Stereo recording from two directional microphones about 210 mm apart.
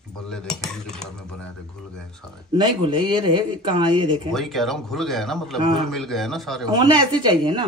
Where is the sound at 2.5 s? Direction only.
25° right (ahead or behind).